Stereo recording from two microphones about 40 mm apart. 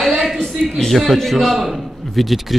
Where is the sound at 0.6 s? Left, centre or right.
Centre.